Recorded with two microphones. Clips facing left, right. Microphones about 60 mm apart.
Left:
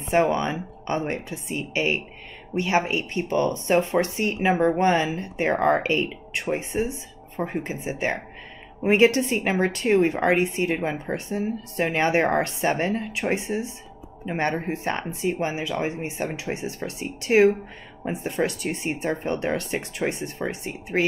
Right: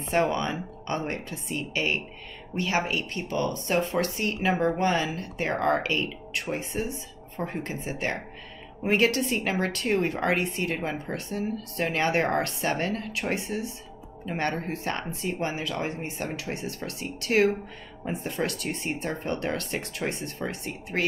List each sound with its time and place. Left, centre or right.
0.0 s a woman's voice: left